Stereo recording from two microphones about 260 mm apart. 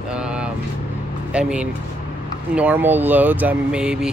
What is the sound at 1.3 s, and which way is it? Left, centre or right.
Speech, centre.